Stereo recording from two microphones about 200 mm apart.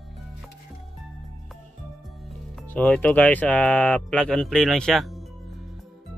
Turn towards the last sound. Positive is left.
turn(degrees=0)  # may be behind; listen again after turning